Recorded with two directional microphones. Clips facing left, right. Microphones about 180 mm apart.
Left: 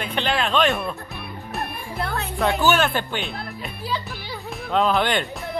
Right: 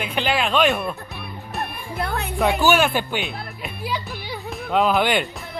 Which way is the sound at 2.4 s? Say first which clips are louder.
Right 2 dB; 10° right (ahead or behind).